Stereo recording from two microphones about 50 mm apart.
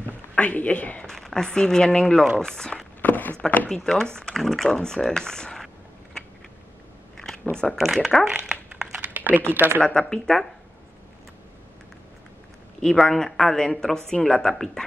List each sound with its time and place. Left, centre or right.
0.4 s speech: left
1.3 s speech: centre
3.0 s a sound: left
3.6 s speech: centre
7.5 s speech: left
7.8 s speech: centre
9.0 s a sound: right
9.5 s speech: right
9.8 s speech: centre
12.8 s speech: centre